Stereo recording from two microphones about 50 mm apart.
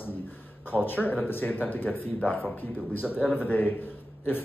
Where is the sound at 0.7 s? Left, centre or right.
Left.